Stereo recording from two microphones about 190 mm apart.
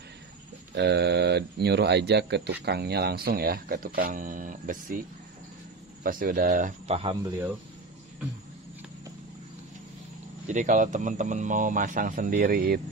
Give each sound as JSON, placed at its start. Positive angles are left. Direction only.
{"t": 0.7, "sound": "speech", "side_deg": -60}
{"t": 6.0, "sound": "speech", "side_deg": -50}
{"t": 6.9, "sound": "speech", "side_deg": -30}
{"t": 10.5, "sound": "speech", "side_deg": -40}